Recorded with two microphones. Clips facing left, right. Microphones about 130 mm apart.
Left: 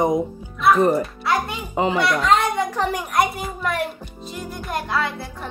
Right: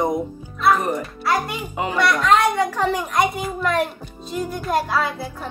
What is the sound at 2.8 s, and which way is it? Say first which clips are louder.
Speech: right 2 dB; 15° left (ahead or behind).